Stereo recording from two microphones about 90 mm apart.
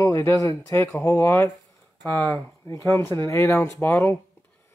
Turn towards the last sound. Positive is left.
turn(degrees=25)  # may be behind; listen again after turning